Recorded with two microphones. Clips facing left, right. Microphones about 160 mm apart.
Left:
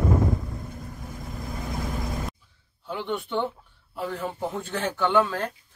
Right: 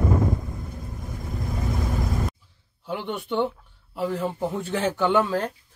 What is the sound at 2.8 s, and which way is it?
Speech, centre (ahead or behind).